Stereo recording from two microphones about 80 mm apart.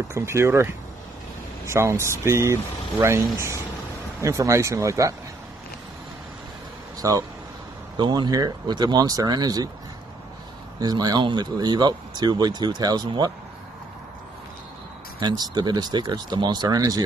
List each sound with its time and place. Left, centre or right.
0.1 s speech: right
7.0 s speech: right
8.0 s speech: right
10.8 s speech: right
15.1 s speech: right